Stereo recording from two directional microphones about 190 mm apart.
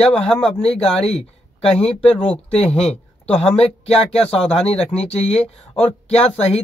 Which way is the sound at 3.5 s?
30° left (ahead or behind).